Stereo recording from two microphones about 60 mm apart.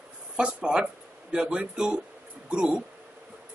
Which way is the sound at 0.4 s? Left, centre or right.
Centre.